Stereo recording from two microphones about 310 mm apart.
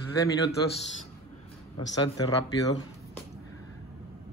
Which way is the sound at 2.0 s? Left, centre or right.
Centre.